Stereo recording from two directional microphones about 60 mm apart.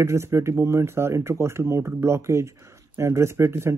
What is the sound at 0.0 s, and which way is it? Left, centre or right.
A man's voice, right.